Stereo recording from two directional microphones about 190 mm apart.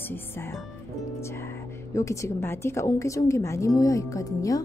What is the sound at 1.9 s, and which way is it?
A woman's voice, 15° left (ahead or behind).